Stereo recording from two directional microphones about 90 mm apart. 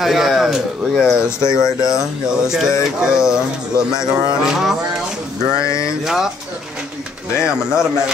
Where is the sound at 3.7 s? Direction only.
50° right (ahead or behind).